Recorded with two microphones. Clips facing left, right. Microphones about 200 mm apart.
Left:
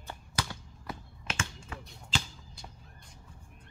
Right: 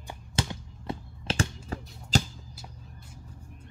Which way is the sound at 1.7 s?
35° right (ahead or behind).